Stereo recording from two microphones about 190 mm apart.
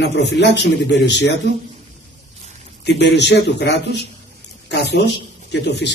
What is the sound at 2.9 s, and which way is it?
A man's voice, 65° left (ahead or behind).